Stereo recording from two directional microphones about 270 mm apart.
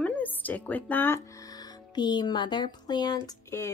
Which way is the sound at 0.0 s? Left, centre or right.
Centre.